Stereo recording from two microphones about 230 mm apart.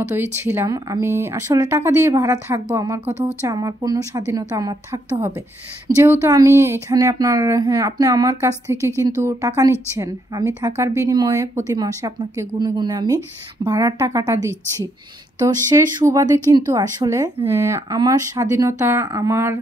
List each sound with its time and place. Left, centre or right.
0.1 s speech: centre
14.4 s a woman's voice: centre
15.4 s speech: centre